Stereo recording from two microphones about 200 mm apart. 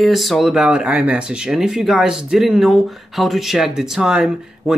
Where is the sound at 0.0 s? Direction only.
Centre (ahead or behind).